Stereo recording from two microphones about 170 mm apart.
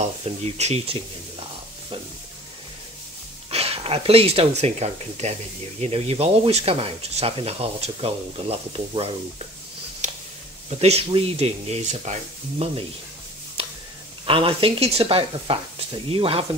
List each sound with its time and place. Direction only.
0.3 s speech: 40° right (ahead or behind)
3.4 s speech: 35° right (ahead or behind)
10.0 s a sound: 45° right (ahead or behind)
10.8 s speech: 35° right (ahead or behind)
14.2 s speech: 30° right (ahead or behind)